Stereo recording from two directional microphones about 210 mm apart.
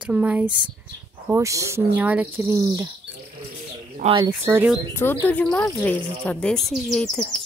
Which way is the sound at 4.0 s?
25° right (ahead or behind).